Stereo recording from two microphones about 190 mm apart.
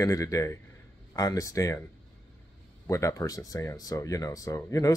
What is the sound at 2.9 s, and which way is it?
Speech, 15° left (ahead or behind).